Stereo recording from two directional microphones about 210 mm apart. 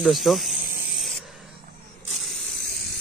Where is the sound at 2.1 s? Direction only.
Centre (ahead or behind).